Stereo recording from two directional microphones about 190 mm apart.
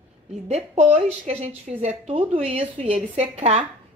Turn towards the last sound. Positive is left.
turn(degrees=-35)  # may be behind; listen again after turning